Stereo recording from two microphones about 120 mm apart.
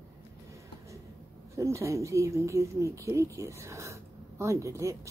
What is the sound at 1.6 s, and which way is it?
Speech, 25° right (ahead or behind).